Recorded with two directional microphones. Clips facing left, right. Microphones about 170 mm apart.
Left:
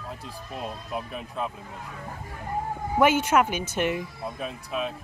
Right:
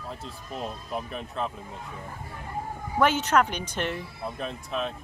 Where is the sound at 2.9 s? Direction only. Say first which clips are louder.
Left 2 dB; 10° left (ahead or behind).